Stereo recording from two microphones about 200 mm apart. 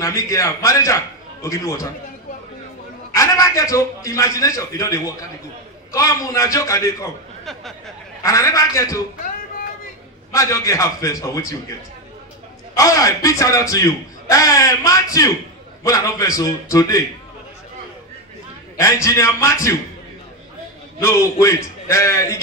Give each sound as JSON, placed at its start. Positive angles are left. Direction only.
{"t": 0.0, "sound": "a man's voice", "side_deg": 15}
{"t": 3.1, "sound": "a man's voice", "side_deg": 15}
{"t": 8.2, "sound": "a man's voice", "side_deg": 15}
{"t": 10.3, "sound": "a man's voice", "side_deg": 15}
{"t": 12.7, "sound": "a man's voice", "side_deg": 15}
{"t": 18.8, "sound": "a man's voice", "side_deg": 15}
{"t": 21.0, "sound": "a man's voice", "side_deg": 15}